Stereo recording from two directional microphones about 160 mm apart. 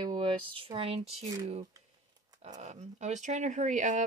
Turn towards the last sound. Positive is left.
turn(degrees=-50)  # may be behind; listen again after turning